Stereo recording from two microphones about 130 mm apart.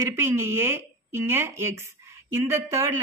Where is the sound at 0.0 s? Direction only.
20° right (ahead or behind).